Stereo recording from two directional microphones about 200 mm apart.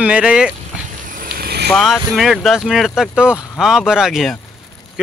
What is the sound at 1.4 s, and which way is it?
Vehicle, 50° right (ahead or behind).